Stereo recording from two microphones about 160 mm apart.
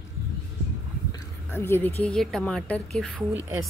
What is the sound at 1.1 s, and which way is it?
A woman's voice, 15° left (ahead or behind).